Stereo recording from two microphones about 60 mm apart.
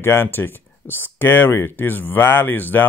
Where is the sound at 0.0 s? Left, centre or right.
Left.